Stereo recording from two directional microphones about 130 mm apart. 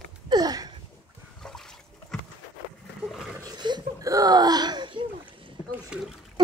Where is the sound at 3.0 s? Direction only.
Centre (ahead or behind).